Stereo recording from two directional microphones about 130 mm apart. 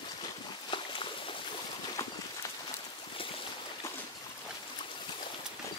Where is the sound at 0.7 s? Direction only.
40° left (ahead or behind).